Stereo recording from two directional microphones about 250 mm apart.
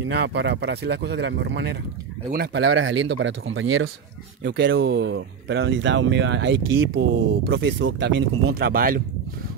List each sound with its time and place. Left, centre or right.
0.0 s speech: right